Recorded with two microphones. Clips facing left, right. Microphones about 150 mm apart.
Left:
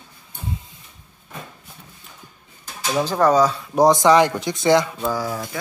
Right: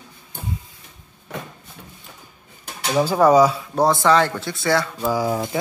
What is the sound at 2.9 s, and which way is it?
Speech, 10° right (ahead or behind).